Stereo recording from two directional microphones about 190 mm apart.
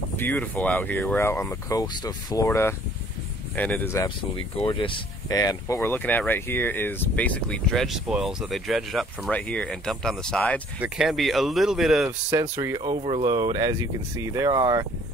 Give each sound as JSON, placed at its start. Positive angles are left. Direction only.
{"t": 0.2, "sound": "speech", "side_deg": 10}
{"t": 4.6, "sound": "speech", "side_deg": 25}
{"t": 12.3, "sound": "speech", "side_deg": -15}